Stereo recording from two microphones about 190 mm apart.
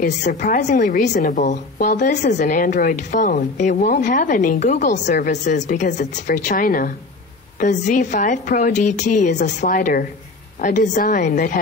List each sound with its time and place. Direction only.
0.0 s a woman's voice: 40° left (ahead or behind)